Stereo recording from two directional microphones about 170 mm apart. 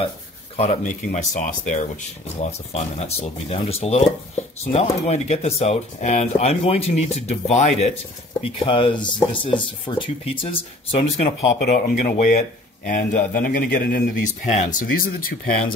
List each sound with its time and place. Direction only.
0.6 s speech: 40° left (ahead or behind)
2.7 s speech: 40° left (ahead or behind)
8.4 s speech: 35° left (ahead or behind)
11.2 s speech: 50° left (ahead or behind)